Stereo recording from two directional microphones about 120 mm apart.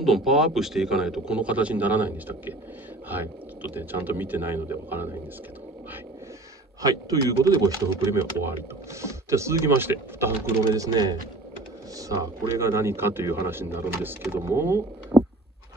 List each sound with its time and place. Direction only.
0.0 s a man's voice: centre (ahead or behind)
3.7 s speech: 15° right (ahead or behind)
6.8 s speech: 30° right (ahead or behind)
15.1 s a sound: 5° right (ahead or behind)